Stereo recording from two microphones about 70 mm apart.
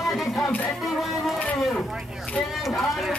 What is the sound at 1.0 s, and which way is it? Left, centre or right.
Music, centre.